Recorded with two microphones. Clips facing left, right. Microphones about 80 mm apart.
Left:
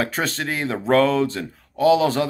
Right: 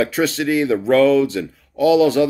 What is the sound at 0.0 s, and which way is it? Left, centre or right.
Speech, left.